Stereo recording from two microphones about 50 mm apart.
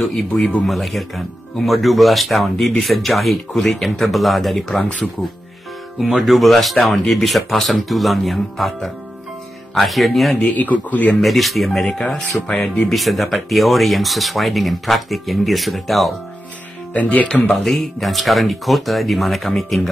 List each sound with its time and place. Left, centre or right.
0.0 s speech: centre
5.9 s speech: centre
10.5 s speech: left
11.1 s speech: centre
16.9 s speech: left
17.3 s speech: centre